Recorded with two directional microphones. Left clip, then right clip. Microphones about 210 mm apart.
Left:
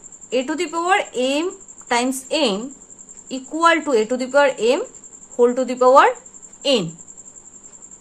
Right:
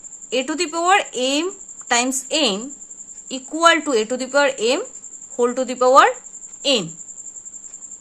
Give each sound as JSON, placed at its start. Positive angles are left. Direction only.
{"t": 0.3, "sound": "a woman's voice", "side_deg": -20}